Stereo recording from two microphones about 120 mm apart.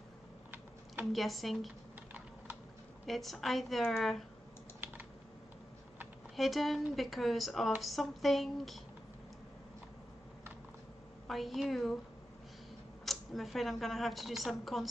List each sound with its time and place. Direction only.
1.1 s a woman's voice: centre (ahead or behind)
3.1 s a woman's voice: centre (ahead or behind)
4.7 s typing: 15° right (ahead or behind)
6.3 s a woman's voice: centre (ahead or behind)
11.2 s a woman's voice: centre (ahead or behind)
13.0 s a woman's voice: centre (ahead or behind)